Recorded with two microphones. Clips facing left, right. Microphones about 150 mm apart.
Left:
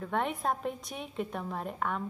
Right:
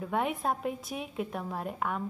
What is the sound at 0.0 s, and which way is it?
A woman's voice, 5° right (ahead or behind).